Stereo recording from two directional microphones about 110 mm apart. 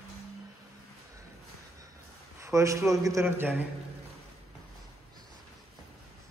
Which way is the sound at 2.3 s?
25° right (ahead or behind).